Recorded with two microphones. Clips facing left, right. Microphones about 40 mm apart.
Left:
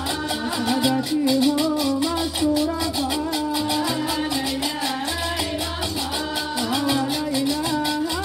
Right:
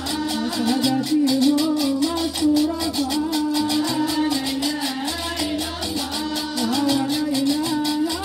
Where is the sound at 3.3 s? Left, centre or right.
Centre.